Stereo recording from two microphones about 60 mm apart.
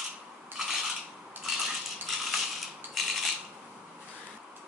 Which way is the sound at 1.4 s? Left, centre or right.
Centre.